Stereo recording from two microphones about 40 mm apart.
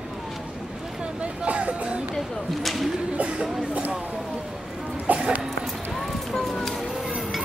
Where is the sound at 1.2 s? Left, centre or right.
Right.